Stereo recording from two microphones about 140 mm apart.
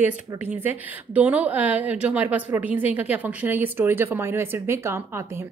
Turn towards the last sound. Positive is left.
turn(degrees=-20)  # may be behind; listen again after turning